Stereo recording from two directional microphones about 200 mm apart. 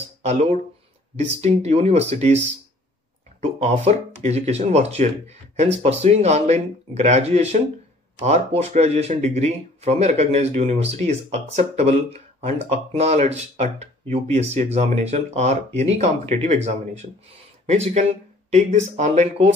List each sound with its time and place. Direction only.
0.2 s speech: 35° right (ahead or behind)
18.9 s speech: 35° right (ahead or behind)